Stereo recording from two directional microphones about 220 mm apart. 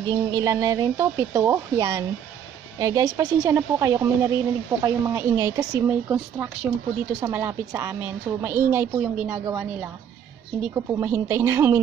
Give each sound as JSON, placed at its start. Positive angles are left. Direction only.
{"t": 0.0, "sound": "a woman's voice", "side_deg": -15}